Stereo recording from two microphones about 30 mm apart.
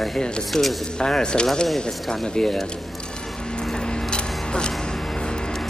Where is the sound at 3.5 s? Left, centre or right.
Left.